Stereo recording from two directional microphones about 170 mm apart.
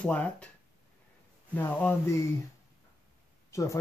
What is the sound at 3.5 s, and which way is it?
Speech, 20° left (ahead or behind).